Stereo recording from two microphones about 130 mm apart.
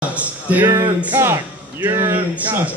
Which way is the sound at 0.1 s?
10° right (ahead or behind).